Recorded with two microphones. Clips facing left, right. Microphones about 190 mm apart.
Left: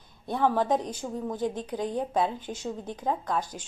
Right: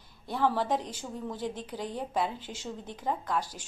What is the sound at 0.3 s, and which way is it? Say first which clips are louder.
A woman's voice: left 3 dB; 15° left (ahead or behind).